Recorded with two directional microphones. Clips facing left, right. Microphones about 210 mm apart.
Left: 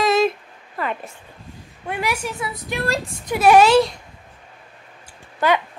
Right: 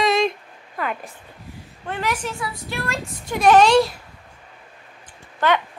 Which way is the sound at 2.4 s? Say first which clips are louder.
Left 2 dB; 20° left (ahead or behind).